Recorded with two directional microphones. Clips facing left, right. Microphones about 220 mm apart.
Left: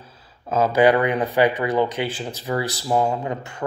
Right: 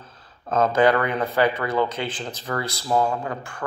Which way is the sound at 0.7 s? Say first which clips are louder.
Left 4 dB; 15° left (ahead or behind).